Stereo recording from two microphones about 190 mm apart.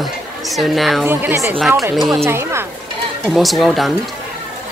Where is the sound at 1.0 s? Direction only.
15° right (ahead or behind).